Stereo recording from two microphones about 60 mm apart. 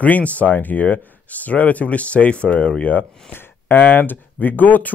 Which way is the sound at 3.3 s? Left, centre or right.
Left.